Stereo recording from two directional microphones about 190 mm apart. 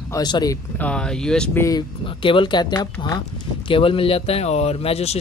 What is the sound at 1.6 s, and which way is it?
A man's voice, 25° left (ahead or behind).